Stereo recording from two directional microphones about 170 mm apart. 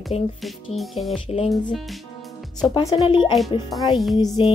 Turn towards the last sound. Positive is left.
turn(degrees=25)  # may be behind; listen again after turning